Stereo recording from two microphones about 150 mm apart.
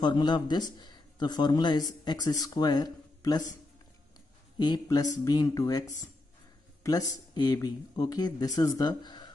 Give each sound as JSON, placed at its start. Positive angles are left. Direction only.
{"t": 0.0, "sound": "speech", "side_deg": 30}
{"t": 4.6, "sound": "speech", "side_deg": 25}